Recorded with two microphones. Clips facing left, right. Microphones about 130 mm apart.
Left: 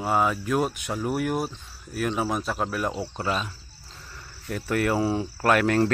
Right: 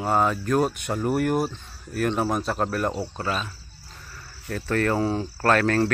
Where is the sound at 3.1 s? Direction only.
20° left (ahead or behind).